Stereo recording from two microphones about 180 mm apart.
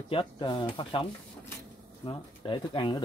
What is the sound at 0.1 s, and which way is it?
Speech, 25° left (ahead or behind).